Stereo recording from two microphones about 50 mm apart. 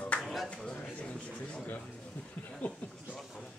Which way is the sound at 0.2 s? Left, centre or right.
Centre.